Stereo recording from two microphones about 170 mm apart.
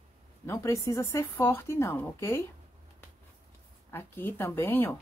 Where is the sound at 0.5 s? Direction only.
15° left (ahead or behind).